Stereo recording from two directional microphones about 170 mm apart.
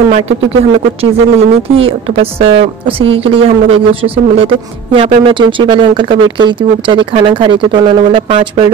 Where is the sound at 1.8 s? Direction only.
35° right (ahead or behind).